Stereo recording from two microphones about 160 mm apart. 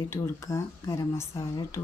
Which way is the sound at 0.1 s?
20° left (ahead or behind).